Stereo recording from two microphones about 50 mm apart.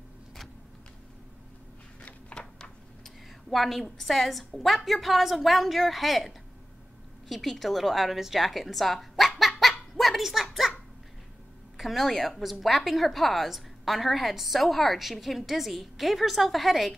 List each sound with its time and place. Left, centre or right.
2.0 s a sound: left
3.0 s a woman's voice: centre
9.4 s belly laugh: centre
11.7 s a woman's voice: centre